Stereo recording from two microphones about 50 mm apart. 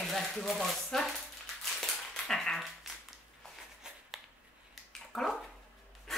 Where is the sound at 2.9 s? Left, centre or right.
Centre.